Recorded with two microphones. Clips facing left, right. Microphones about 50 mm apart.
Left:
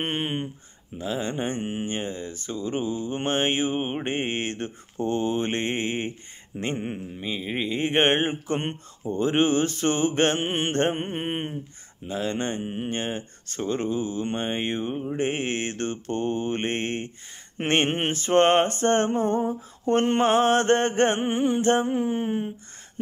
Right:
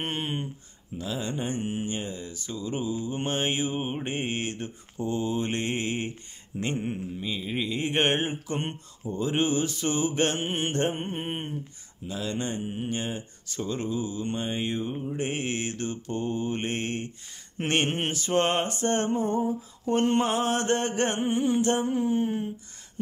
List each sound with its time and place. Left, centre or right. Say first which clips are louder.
0.0 s speech: left 3 dB; left
12.1 s speech: left 4 dB; left